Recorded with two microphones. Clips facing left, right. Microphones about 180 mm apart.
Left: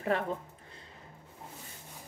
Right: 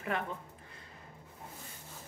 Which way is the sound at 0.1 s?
35° left (ahead or behind).